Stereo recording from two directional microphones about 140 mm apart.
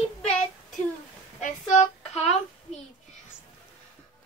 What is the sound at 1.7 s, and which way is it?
Child singing, 60° left (ahead or behind).